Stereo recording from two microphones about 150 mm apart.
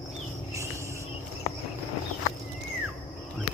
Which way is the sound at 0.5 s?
20° right (ahead or behind).